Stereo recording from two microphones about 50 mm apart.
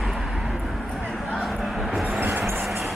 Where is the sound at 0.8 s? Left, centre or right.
Centre.